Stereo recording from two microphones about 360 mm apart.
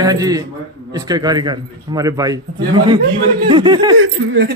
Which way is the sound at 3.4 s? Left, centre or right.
Centre.